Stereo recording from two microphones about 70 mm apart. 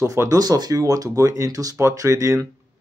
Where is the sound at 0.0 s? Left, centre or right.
Right.